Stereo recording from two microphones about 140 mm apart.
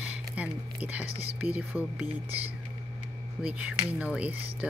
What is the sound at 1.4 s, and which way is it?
Speech, 10° right (ahead or behind).